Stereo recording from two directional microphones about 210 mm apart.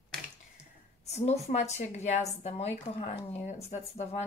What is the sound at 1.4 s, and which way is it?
A woman's voice, 30° left (ahead or behind).